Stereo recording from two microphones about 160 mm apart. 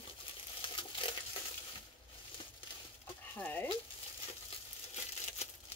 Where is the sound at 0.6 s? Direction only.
30° left (ahead or behind).